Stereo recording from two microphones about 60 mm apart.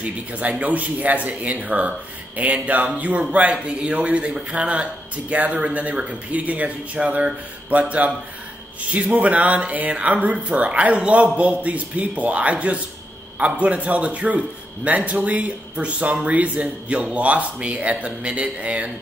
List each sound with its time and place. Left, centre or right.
0.0 s speech: right